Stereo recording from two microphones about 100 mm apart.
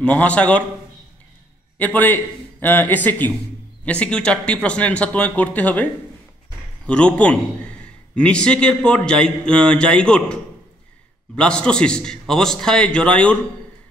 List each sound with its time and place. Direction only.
0.0 s a man's voice: 15° left (ahead or behind)
1.8 s a man's voice: 15° left (ahead or behind)
6.9 s a man's voice: 10° left (ahead or behind)